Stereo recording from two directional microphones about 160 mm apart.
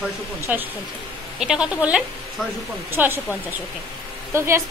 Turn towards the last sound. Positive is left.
turn(degrees=-15)  # may be behind; listen again after turning